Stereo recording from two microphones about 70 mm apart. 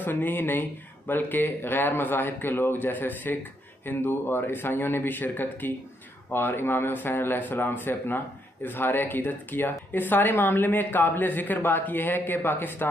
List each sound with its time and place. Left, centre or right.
0.0 s speech: left